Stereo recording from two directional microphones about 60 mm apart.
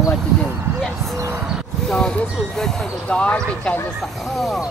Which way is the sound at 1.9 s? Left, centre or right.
Centre.